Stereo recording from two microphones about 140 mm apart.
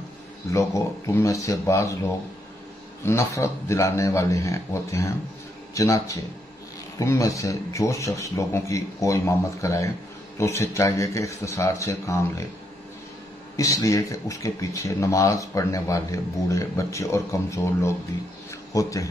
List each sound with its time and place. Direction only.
0.5 s speech: 20° left (ahead or behind)
13.6 s speech: 25° left (ahead or behind)